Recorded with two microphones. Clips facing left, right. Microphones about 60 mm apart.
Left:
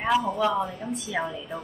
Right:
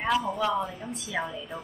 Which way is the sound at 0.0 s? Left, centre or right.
Centre.